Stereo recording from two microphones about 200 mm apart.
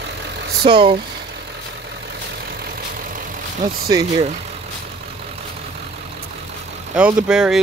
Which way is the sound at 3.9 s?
20° right (ahead or behind).